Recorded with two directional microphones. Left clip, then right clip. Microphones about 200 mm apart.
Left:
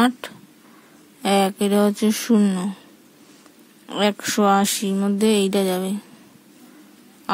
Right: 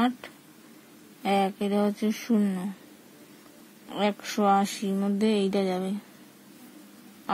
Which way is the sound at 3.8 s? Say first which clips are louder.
Left 7 dB; 35° left (ahead or behind).